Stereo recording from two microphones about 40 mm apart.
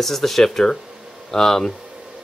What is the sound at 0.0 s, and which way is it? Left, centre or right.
Speech, centre.